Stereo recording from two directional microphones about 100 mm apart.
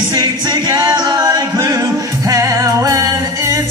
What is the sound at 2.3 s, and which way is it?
Music, 35° right (ahead or behind).